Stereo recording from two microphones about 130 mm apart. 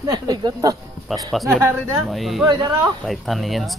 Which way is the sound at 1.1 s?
Centre (ahead or behind).